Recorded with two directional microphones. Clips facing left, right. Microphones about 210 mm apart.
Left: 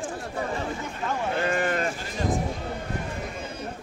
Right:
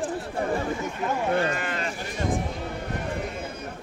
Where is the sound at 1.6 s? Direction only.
50° left (ahead or behind).